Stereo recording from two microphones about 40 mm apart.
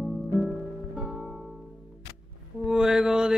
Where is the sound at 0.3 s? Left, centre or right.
Centre.